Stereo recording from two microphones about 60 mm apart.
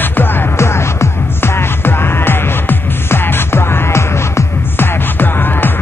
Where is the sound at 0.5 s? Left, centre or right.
Left.